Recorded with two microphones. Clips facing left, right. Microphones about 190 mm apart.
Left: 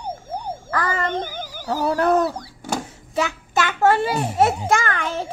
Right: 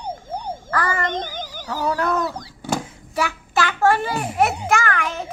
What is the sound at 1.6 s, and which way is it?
Speech, 40° left (ahead or behind).